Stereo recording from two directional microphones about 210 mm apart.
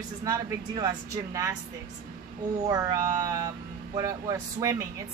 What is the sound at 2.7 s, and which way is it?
A woman's voice, 15° right (ahead or behind).